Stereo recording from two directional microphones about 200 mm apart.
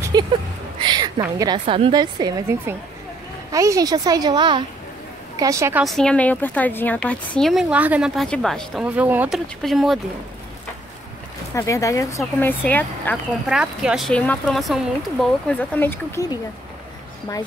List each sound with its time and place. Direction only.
0.1 s a sound: 20° right (ahead or behind)
1.2 s a woman's voice: 20° right (ahead or behind)
5.9 s speech: 5° left (ahead or behind)
11.5 s speech: 15° left (ahead or behind)
13.5 s speech: 5° right (ahead or behind)